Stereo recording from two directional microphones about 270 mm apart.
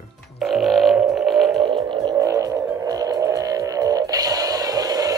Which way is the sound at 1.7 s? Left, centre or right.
Centre.